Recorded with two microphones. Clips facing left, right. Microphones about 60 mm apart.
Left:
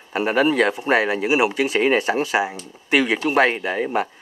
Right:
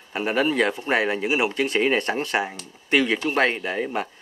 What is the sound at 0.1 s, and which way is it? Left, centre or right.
Speech, centre.